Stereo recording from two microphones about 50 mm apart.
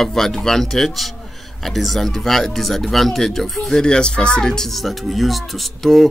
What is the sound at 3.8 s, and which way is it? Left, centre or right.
Speech, centre.